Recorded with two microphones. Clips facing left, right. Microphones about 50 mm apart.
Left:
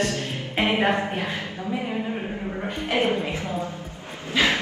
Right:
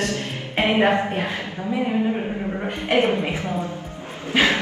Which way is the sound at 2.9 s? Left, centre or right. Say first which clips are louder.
Right 4 dB; right.